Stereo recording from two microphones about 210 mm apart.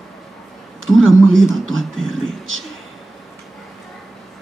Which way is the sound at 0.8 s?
70° right (ahead or behind).